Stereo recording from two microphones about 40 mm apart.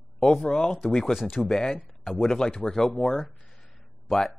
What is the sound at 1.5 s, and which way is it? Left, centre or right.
Speech, centre.